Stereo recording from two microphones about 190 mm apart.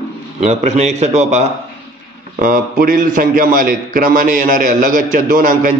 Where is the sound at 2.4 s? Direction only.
45° right (ahead or behind).